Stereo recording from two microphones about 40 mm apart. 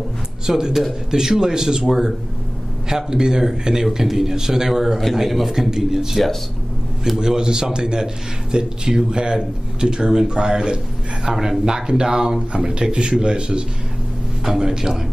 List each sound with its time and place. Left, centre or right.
0.5 s a man's voice: centre
7.2 s a man's voice: centre
11.3 s speech: centre
11.6 s a man's voice: centre
14.4 s a man's voice: centre